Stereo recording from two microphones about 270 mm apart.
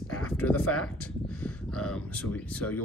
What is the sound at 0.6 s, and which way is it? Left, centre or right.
Speech, left.